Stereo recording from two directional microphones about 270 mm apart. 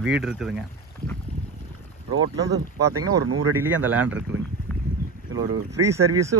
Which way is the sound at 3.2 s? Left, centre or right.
Right.